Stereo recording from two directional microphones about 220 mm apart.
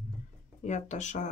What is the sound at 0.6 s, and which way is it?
Speech, 30° left (ahead or behind).